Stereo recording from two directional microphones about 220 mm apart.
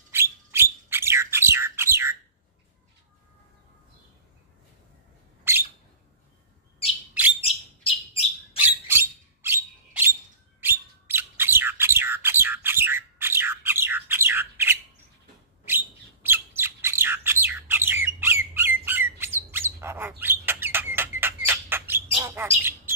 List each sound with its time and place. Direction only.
0.1 s bird: 10° right (ahead or behind)
5.5 s bird: 10° right (ahead or behind)
7.3 s bird: 25° left (ahead or behind)
8.5 s a sound: 10° right (ahead or behind)
15.6 s bird: 10° right (ahead or behind)